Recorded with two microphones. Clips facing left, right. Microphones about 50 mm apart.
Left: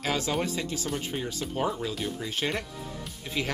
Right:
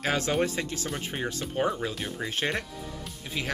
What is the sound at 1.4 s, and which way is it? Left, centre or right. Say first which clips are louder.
Speech: right 2 dB; right.